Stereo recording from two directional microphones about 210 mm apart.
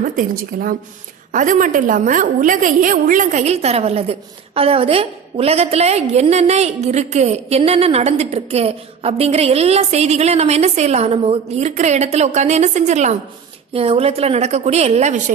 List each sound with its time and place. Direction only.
0.0 s a woman's voice: 40° right (ahead or behind)